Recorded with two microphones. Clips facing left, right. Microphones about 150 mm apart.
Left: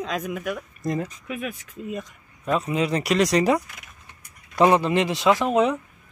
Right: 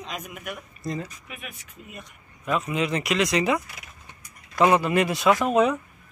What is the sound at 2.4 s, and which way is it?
Speech, 35° left (ahead or behind).